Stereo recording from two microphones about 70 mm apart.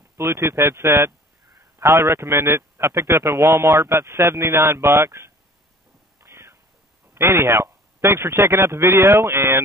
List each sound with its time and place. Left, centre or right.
0.2 s a man's voice: right
6.2 s whispering: right
7.2 s a man's voice: right